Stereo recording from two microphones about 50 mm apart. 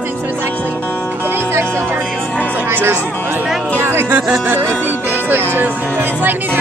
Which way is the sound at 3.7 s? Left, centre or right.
Right.